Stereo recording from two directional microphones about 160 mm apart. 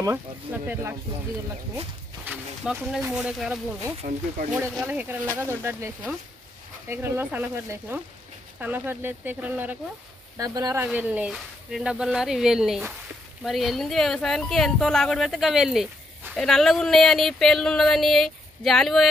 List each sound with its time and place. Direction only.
0.0 s speech: 15° right (ahead or behind)
2.2 s speech: 5° right (ahead or behind)
4.0 s speech: 60° right (ahead or behind)
4.8 s speech: 10° right (ahead or behind)
10.3 s speech: 20° right (ahead or behind)
10.8 s speech: 10° right (ahead or behind)